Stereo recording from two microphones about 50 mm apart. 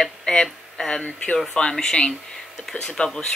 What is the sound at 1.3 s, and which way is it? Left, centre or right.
Speech, centre.